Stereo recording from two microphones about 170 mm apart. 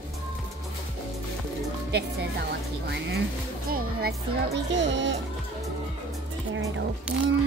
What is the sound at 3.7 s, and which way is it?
Speech, 65° right (ahead or behind).